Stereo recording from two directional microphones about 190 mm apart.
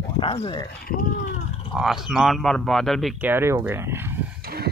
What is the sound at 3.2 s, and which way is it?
Speech, 10° right (ahead or behind).